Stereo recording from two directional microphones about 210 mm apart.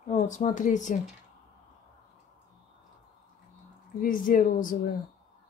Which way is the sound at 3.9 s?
40° left (ahead or behind).